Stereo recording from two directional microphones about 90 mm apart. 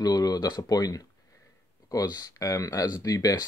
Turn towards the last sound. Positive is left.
turn(degrees=45)  # may be behind; listen again after turning